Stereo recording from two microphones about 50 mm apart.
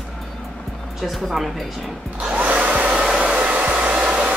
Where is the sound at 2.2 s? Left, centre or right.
Right.